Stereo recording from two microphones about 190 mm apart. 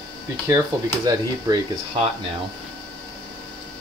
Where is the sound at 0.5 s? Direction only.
20° right (ahead or behind).